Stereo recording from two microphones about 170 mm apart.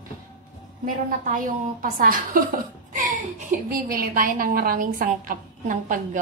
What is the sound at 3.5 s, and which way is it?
A woman's voice, 60° right (ahead or behind).